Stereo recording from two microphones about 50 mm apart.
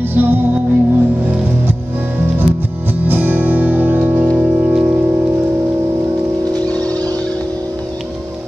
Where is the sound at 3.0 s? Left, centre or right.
Right.